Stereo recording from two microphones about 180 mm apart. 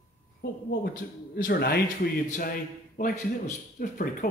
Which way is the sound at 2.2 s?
45° left (ahead or behind).